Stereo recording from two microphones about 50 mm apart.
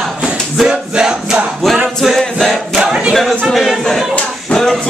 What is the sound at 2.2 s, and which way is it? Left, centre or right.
Choir, centre.